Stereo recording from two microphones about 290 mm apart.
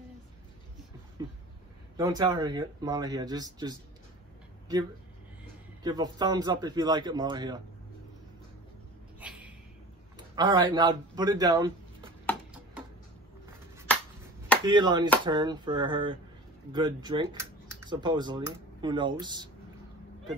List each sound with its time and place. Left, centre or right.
2.0 s speech: centre
5.9 s speech: centre
10.1 s a man's voice: centre
14.6 s speech: centre